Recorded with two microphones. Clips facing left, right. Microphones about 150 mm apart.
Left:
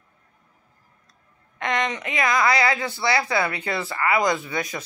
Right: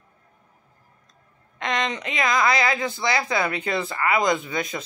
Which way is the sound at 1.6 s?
20° right (ahead or behind).